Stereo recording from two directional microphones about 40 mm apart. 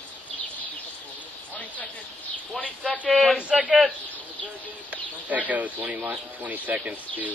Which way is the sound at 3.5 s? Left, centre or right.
Right.